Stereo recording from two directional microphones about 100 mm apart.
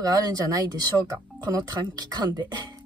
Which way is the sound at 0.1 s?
40° right (ahead or behind).